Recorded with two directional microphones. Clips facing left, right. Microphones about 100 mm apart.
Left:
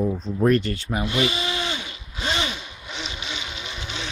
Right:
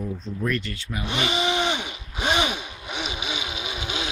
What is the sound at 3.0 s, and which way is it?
Vehicle, 10° right (ahead or behind).